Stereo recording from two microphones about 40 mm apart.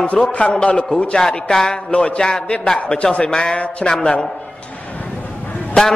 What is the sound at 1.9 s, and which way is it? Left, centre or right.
A man's voice, left.